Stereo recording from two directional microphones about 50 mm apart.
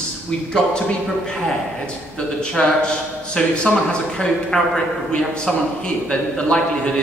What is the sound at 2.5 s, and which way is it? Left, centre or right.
A woman's voice, centre.